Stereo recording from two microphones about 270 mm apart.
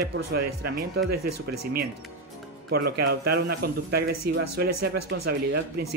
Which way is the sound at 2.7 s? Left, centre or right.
Right.